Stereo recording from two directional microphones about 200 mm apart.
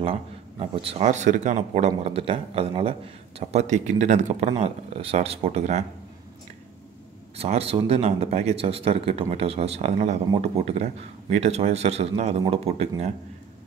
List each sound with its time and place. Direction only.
0.0 s speech: 30° right (ahead or behind)
7.3 s speech: 30° right (ahead or behind)